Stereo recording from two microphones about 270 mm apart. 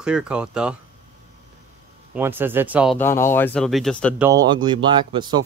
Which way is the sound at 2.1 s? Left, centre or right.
Centre.